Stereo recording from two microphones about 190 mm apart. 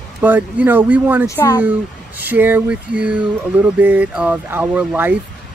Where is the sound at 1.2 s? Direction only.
15° left (ahead or behind).